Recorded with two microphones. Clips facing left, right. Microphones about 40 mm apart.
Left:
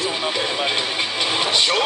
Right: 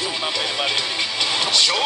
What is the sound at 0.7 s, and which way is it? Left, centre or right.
Music, left.